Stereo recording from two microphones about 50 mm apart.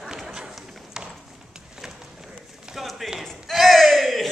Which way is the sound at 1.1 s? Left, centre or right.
Centre.